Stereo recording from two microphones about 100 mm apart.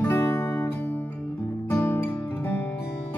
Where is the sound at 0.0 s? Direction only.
25° left (ahead or behind).